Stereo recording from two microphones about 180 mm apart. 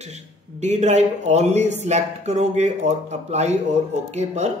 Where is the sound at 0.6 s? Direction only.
40° right (ahead or behind).